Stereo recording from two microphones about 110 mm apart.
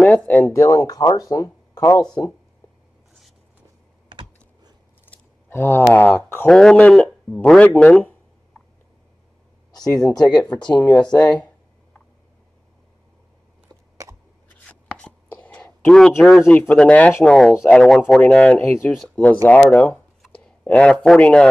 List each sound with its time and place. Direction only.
0.6 s speech: 30° left (ahead or behind)
4.1 s computer keyboard: 45° right (ahead or behind)
5.0 s speech: 20° left (ahead or behind)
9.7 s speech: 35° left (ahead or behind)
10.8 s speech: 15° left (ahead or behind)
11.1 s speech: 40° left (ahead or behind)
14.7 s writing: 10° left (ahead or behind)
16.4 s speech: 15° left (ahead or behind)